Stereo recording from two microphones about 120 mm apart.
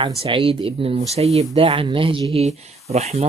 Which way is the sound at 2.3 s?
60° right (ahead or behind).